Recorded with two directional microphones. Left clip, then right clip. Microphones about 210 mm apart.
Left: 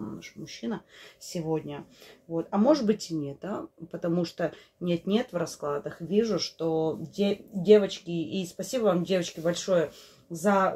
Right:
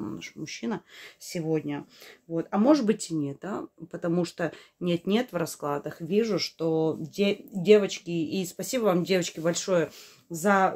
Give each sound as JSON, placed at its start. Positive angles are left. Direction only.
{"t": 0.2, "sound": "speech", "side_deg": -35}
{"t": 1.3, "sound": "speech", "side_deg": -20}